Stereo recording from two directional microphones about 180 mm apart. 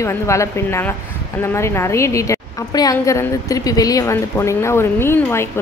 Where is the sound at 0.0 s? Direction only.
15° left (ahead or behind).